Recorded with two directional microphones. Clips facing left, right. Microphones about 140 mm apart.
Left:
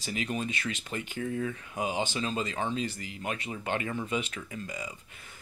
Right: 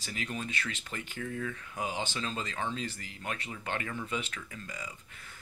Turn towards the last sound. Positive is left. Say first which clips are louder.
# left 5 dB
turn(degrees=20)  # may be behind; listen again after turning